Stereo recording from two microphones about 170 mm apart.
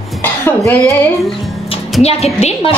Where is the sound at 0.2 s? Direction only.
10° left (ahead or behind).